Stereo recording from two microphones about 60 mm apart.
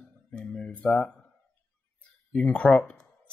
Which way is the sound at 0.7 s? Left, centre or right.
Left.